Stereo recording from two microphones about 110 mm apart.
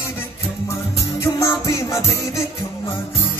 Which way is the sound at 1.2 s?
25° left (ahead or behind).